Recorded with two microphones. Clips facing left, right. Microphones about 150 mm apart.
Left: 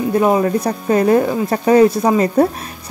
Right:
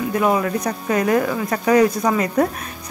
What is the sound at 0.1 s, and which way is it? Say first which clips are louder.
Speech: left 5 dB; 30° left (ahead or behind).